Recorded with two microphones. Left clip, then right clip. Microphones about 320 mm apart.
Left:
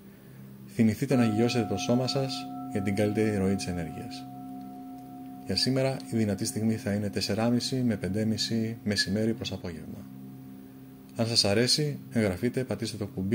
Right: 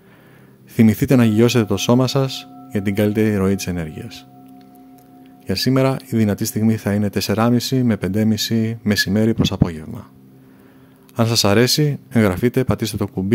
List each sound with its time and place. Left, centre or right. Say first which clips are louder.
0.7 s speech: right 11 dB; right
5.5 s speech: right 9 dB; right
11.1 s speech: right 9 dB; right